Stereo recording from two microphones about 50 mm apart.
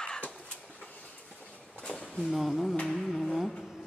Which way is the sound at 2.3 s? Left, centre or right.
Centre.